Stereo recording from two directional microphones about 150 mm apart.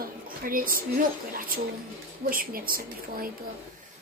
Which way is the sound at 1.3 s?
70° right (ahead or behind).